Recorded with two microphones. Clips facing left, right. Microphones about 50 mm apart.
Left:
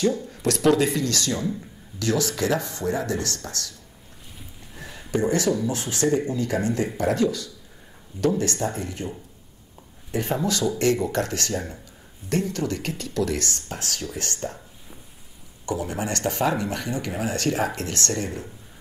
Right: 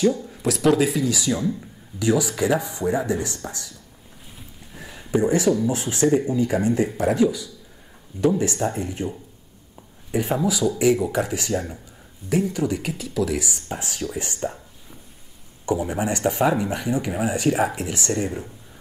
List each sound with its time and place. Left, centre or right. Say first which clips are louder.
0.3 s speech: right 1 dB; centre
4.4 s a sound: even; centre
5.7 s speech: right 3 dB; right
10.1 s speech: right 2 dB; centre
15.6 s speech: right 4 dB; centre